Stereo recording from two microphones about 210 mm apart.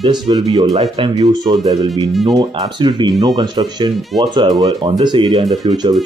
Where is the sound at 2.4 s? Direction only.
20° right (ahead or behind).